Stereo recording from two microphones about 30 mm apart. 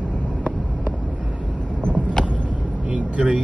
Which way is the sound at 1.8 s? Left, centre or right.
Left.